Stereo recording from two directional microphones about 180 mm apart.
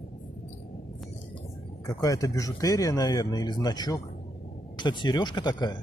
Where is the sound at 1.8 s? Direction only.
20° left (ahead or behind).